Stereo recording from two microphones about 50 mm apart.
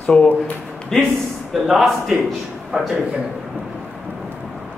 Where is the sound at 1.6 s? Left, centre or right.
Centre.